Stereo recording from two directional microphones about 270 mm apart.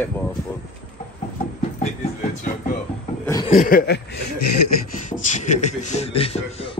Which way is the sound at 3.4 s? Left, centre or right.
Left.